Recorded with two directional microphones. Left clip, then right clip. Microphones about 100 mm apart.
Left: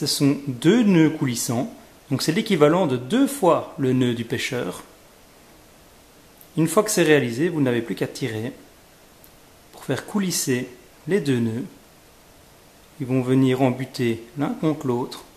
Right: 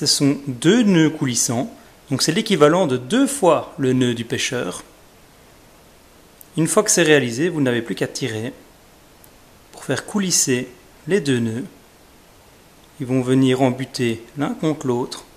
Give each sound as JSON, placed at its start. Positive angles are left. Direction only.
{"t": 0.0, "sound": "speech", "side_deg": -25}
{"t": 6.5, "sound": "speech", "side_deg": -25}
{"t": 9.8, "sound": "speech", "side_deg": -25}
{"t": 13.0, "sound": "speech", "side_deg": -25}